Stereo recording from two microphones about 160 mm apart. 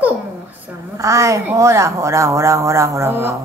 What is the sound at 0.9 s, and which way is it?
Speech, 20° right (ahead or behind).